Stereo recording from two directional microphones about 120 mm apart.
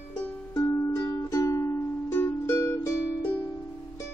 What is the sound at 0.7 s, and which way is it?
Music, 25° left (ahead or behind).